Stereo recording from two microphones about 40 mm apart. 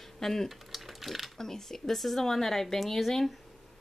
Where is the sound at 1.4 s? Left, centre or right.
Centre.